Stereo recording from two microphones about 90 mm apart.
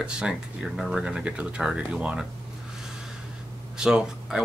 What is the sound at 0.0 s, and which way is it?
Speech, 10° right (ahead or behind).